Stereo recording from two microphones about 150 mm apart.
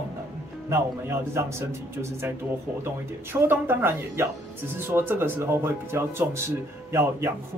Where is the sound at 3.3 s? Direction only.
15° right (ahead or behind).